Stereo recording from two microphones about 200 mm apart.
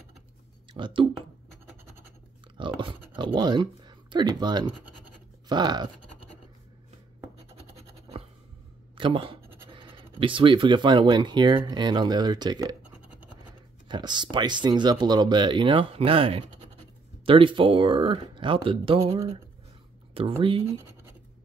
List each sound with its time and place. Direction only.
0.7 s speech: 25° right (ahead or behind)
2.5 s chewing: 25° right (ahead or behind)
3.2 s speech: 25° right (ahead or behind)
7.7 s scratch: 30° right (ahead or behind)
8.9 s speech: 25° right (ahead or behind)
13.8 s speech: 20° right (ahead or behind)